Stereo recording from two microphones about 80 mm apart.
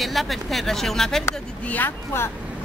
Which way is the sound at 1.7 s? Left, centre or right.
Left.